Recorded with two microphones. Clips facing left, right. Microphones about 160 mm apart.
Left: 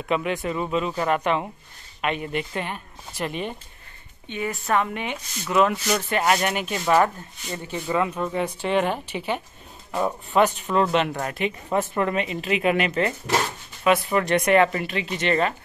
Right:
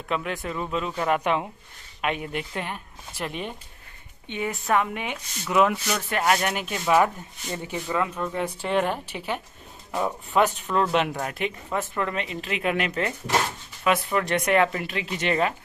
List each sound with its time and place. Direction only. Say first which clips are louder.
0.1 s speech: left 4 dB; 5° left (ahead or behind)
4.3 s a woman's voice: left 1 dB; 20° right (ahead or behind)
4.6 s speech: even; 5° right (ahead or behind)
5.9 s speech: left 2 dB; 5° left (ahead or behind)
7.5 s speech: even; 15° right (ahead or behind)
8.2 s speech: left 3 dB; 10° left (ahead or behind)
11.7 s speech: left 6 dB; 20° left (ahead or behind); by 15.5 s 5° right (ahead or behind)